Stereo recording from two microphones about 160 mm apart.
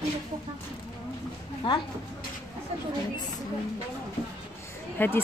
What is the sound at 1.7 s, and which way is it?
Speech, 35° left (ahead or behind).